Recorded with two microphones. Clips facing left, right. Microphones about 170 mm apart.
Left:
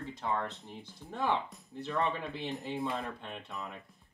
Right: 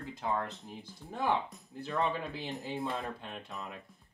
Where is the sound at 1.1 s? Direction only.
Centre (ahead or behind).